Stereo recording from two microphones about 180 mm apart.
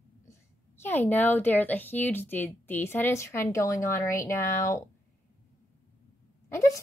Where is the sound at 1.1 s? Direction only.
10° left (ahead or behind).